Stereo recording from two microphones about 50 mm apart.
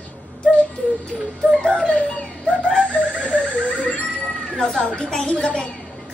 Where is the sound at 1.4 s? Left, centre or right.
Centre.